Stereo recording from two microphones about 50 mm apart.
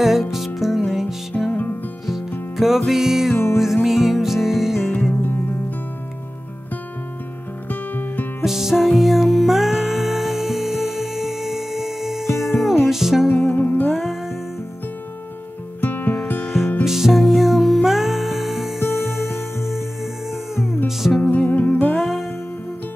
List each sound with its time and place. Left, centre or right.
0.0 s music: centre
1.5 s music: left
2.5 s music: centre
5.2 s music: left
7.9 s music: left
8.5 s music: centre
13.3 s music: left
13.8 s music: centre
15.8 s music: left
16.3 s music: centre
21.0 s music: left
21.9 s music: centre